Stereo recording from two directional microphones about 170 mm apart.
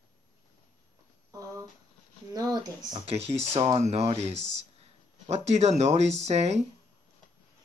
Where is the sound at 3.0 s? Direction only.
35° right (ahead or behind).